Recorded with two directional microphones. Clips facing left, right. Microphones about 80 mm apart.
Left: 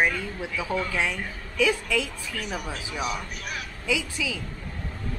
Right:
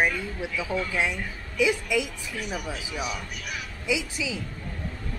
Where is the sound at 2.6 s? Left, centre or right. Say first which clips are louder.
Left 1 dB; left.